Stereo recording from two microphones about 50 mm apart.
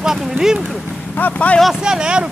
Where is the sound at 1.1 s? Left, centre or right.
Left.